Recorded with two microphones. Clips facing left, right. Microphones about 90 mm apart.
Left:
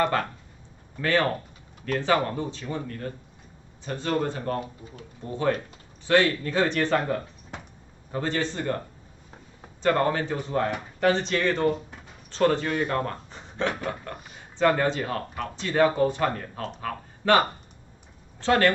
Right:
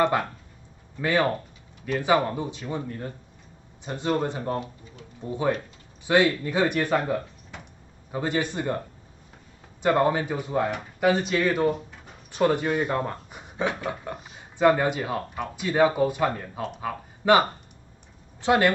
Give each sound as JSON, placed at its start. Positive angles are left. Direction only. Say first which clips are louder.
{"t": 0.9, "sound": "speech", "louder": "right 1 dB", "side_deg": -15}